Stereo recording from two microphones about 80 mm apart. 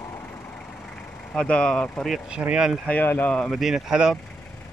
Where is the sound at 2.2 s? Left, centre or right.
Centre.